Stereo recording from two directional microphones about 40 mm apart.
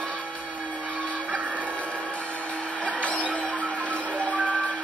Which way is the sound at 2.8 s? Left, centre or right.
Left.